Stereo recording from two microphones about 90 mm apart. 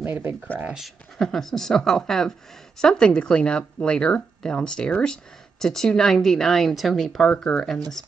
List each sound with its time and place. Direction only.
0.0 s speech: 25° right (ahead or behind)
0.7 s speech: centre (ahead or behind)